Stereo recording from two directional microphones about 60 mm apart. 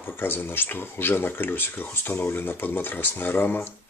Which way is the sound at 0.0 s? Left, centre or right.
Left.